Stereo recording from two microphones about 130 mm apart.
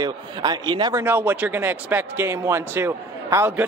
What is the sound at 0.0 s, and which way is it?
A man's voice, 35° right (ahead or behind).